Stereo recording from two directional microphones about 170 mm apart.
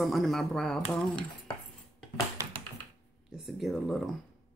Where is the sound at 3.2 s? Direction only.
Centre (ahead or behind).